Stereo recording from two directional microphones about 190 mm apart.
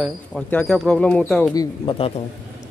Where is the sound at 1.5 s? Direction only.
25° left (ahead or behind).